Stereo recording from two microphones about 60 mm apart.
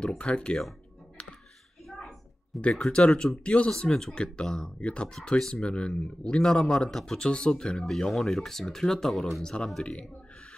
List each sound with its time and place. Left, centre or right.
0.2 s speech: centre
1.9 s a sound: centre
2.6 s speech: centre